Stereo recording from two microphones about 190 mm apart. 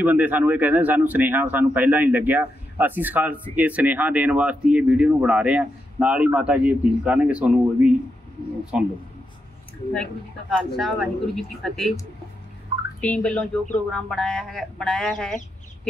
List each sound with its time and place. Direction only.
0.0 s speech: 10° right (ahead or behind)
10.6 s speech: centre (ahead or behind)
13.0 s speech: 5° left (ahead or behind)